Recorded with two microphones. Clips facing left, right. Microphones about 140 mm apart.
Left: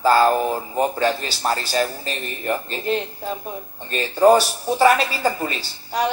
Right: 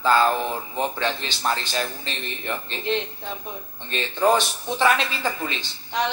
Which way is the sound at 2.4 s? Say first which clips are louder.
Left 7 dB; 45° left (ahead or behind).